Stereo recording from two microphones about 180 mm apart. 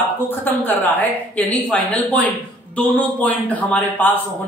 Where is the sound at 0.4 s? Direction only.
10° left (ahead or behind).